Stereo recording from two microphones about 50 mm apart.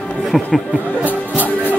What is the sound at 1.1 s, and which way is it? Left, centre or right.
Music, left.